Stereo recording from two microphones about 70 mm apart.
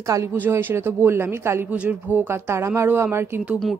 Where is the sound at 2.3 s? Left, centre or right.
Right.